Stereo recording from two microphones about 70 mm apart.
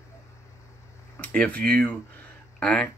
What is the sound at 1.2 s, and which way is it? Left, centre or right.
Speech, left.